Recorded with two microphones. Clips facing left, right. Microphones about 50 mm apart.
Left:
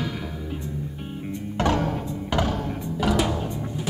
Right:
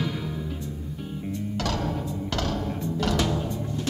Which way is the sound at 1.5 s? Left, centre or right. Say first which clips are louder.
Left 7 dB; left.